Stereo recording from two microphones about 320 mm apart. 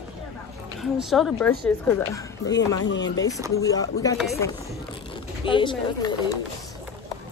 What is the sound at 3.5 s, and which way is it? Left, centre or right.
Speech, centre.